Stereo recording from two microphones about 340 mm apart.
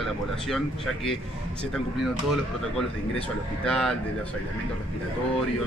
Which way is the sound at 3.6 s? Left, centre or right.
Centre.